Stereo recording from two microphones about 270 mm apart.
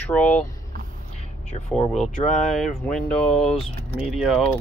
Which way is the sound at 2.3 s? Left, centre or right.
Centre.